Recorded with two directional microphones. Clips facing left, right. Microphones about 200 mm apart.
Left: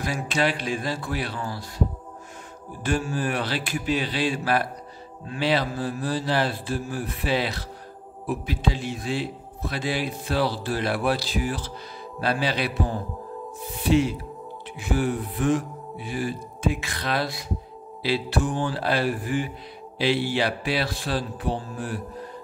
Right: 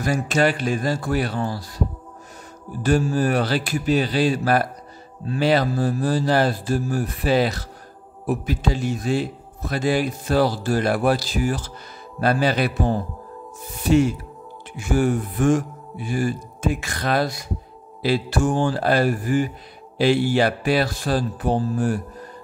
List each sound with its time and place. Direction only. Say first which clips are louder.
0.0 s a man's voice: right 5 dB; 45° right (ahead or behind)
2.8 s a man's voice: right 6 dB; 40° right (ahead or behind)